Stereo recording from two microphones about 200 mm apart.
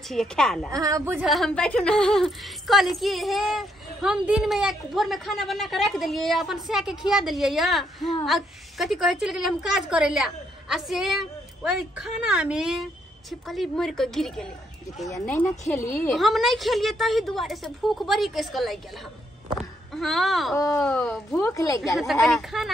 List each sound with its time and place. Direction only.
0.1 s a woman's voice: centre (ahead or behind)
0.7 s a woman's voice: 15° right (ahead or behind); by 14.5 s centre (ahead or behind)
15.0 s a woman's voice: 10° left (ahead or behind)
16.2 s a woman's voice: centre (ahead or behind)
19.9 s a woman's voice: centre (ahead or behind)
20.5 s a woman's voice: 15° left (ahead or behind)
20.8 s a woman's voice: 5° left (ahead or behind)
21.4 s a woman's voice: 15° left (ahead or behind)
21.8 s a woman's voice: centre (ahead or behind)